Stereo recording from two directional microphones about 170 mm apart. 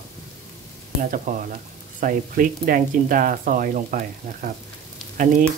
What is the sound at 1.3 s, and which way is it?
Speech, 50° right (ahead or behind).